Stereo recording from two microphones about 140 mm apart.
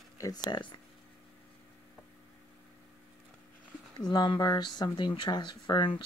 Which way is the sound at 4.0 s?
30° left (ahead or behind).